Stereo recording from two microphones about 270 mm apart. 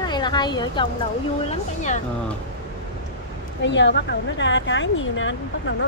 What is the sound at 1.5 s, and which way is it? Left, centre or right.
Speech, left.